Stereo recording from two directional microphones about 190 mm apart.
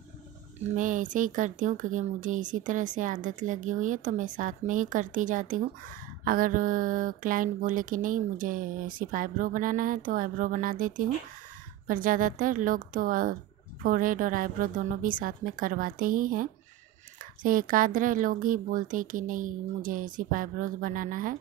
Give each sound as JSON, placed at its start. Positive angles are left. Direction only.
{"t": 0.7, "sound": "speech", "side_deg": -45}